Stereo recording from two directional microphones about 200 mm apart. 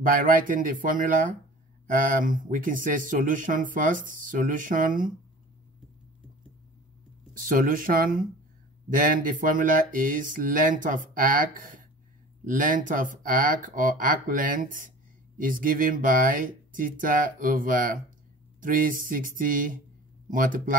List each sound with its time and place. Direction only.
0.0 s speech: 45° right (ahead or behind)
7.3 s speech: 40° right (ahead or behind)